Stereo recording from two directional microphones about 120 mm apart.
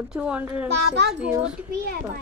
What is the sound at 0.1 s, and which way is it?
Speech, 10° right (ahead or behind).